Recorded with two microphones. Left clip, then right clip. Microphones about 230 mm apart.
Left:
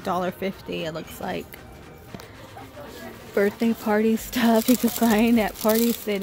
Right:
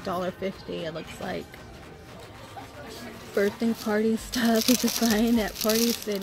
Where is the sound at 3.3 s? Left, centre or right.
Centre.